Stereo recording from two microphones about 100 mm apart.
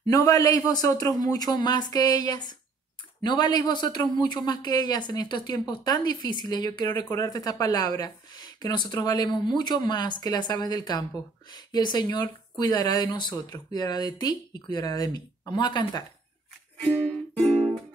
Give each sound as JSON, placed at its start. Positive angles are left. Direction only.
{"t": 0.0, "sound": "a man's voice", "side_deg": 40}
{"t": 7.1, "sound": "a man's voice", "side_deg": 35}